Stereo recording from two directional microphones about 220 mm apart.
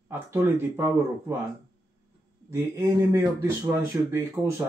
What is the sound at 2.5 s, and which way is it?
Speech, 10° right (ahead or behind).